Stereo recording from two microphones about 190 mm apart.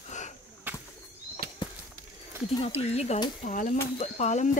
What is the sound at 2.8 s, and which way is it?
Speech, 35° left (ahead or behind).